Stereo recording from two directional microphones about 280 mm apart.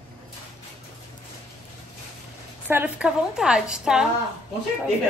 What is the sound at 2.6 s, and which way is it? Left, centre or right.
A woman's voice, centre.